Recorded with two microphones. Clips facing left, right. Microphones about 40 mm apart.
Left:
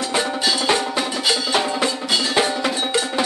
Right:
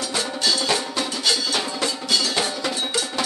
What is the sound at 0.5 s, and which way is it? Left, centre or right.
Percussion, left.